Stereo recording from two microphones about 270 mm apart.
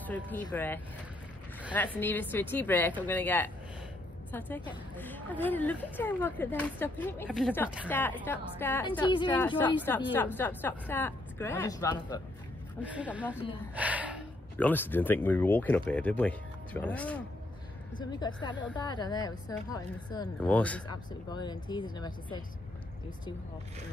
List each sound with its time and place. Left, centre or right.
0.0 s speech: centre
12.8 s speech: centre
14.6 s speech: centre
17.9 s speech: centre
21.3 s speech: centre